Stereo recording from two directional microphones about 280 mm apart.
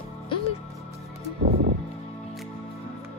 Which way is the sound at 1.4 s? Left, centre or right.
Right.